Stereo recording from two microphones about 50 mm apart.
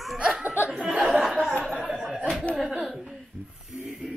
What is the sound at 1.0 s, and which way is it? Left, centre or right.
Chuckle, centre.